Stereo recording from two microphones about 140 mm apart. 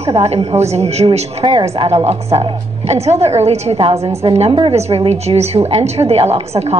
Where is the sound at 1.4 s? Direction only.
35° right (ahead or behind).